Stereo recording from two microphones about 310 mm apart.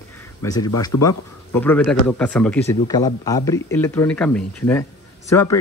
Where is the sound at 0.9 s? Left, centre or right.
Left.